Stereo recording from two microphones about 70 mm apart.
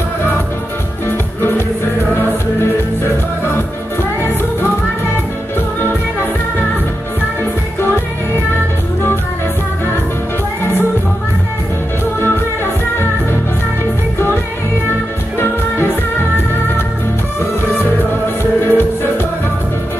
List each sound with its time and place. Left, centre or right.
15.3 s music: left
18.7 s music: left